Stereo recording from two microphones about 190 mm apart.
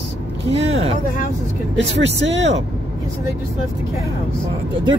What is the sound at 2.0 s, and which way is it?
Speech, 70° right (ahead or behind).